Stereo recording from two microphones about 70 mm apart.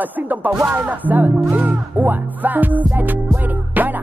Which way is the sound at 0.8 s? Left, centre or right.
Right.